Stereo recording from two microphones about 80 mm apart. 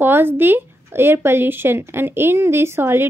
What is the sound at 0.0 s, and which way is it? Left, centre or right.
Speech, right.